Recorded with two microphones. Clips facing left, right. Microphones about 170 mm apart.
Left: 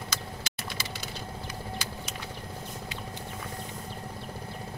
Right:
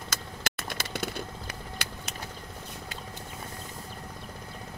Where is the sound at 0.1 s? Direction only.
50° right (ahead or behind).